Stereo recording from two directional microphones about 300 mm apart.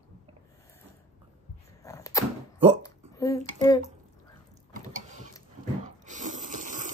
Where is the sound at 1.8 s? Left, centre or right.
Centre.